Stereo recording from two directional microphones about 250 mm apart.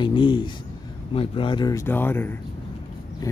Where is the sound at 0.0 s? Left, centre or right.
Centre.